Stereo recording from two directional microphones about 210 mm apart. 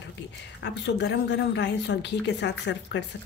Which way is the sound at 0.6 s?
55° left (ahead or behind).